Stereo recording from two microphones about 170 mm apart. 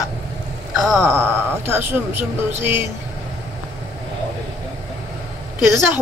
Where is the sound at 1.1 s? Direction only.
15° right (ahead or behind).